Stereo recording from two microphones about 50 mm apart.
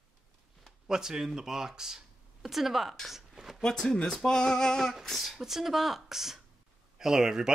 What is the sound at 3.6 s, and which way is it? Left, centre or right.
Speech, centre.